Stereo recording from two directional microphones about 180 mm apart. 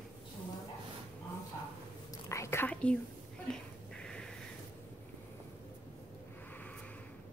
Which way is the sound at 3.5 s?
5° left (ahead or behind).